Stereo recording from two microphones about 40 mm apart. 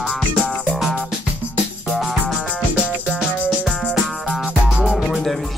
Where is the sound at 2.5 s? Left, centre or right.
Right.